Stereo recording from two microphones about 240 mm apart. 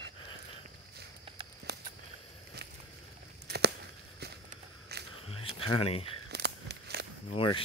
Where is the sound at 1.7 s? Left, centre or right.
Right.